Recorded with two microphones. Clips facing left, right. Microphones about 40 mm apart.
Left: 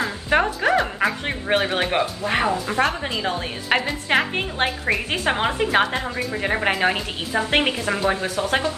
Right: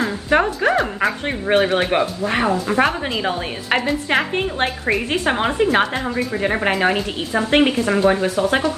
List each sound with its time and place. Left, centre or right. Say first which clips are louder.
0.0 s speech: right 3 dB; centre
2.7 s speech: right 4 dB; centre
3.7 s a woman's voice: right 2 dB; centre